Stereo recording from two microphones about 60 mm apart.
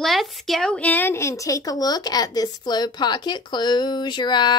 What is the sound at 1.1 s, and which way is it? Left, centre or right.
A woman's voice, left.